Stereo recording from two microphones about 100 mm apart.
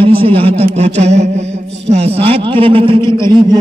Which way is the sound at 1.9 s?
70° right (ahead or behind).